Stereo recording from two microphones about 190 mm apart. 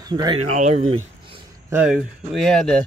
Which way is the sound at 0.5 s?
35° right (ahead or behind).